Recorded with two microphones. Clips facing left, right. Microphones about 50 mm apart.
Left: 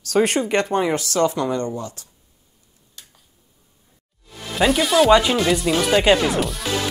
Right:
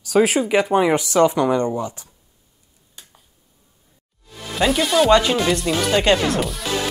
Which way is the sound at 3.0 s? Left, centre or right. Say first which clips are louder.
Even; centre.